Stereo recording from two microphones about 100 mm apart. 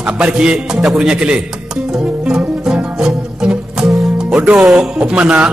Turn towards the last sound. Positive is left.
turn(degrees=-10)  # may be behind; listen again after turning